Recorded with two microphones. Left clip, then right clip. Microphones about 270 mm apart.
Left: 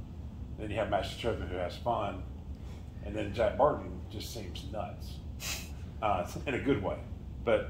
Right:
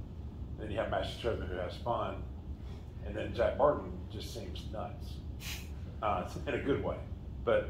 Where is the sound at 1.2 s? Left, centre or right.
Left.